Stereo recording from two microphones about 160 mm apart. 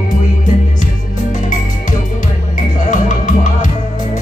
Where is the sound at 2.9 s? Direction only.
55° left (ahead or behind).